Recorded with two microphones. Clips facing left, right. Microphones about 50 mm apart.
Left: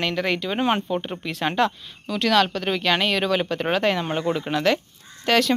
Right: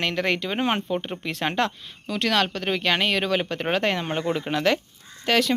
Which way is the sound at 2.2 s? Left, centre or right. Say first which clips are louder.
Left 3 dB; right.